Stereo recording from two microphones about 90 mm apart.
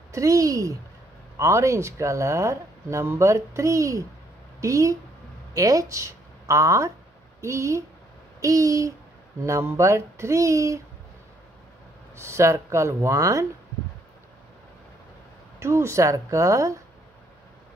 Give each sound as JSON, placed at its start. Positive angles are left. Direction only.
{"t": 0.1, "sound": "a woman's voice", "side_deg": -40}
{"t": 12.2, "sound": "speech", "side_deg": -30}
{"t": 15.6, "sound": "speech", "side_deg": -30}